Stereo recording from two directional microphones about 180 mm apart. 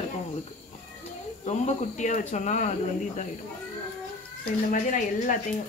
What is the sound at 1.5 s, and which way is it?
Speech, 40° left (ahead or behind).